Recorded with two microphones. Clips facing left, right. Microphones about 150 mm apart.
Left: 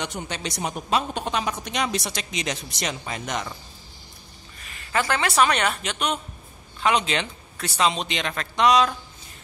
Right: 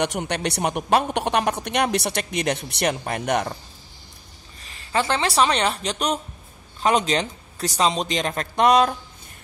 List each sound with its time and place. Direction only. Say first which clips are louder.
0.0 s a woman's voice: right 7 dB; 70° right (ahead or behind)
4.6 s a man's voice: right 2 dB; 30° right (ahead or behind); by 8.9 s 50° right (ahead or behind)